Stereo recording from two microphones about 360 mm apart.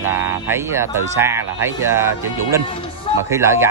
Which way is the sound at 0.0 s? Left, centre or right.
Centre.